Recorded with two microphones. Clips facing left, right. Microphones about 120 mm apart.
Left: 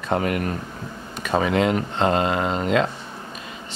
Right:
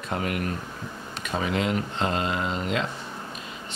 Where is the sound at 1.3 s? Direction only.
80° left; by 2.7 s 55° left (ahead or behind).